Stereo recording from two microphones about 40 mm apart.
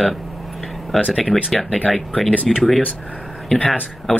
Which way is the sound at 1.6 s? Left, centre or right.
Left.